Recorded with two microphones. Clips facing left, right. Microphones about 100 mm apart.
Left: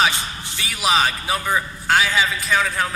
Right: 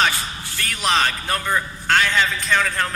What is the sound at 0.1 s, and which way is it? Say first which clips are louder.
Music: even; 20° left (ahead or behind).